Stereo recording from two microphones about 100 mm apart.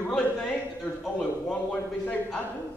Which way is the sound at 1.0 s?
10° left (ahead or behind).